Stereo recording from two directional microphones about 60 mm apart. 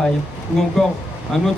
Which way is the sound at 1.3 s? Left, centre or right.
Centre.